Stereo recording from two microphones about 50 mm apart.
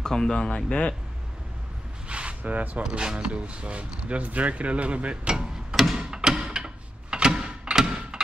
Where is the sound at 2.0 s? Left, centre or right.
Right.